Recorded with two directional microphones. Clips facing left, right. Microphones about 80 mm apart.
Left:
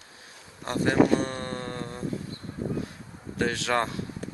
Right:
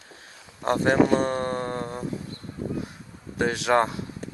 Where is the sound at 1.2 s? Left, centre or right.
Right.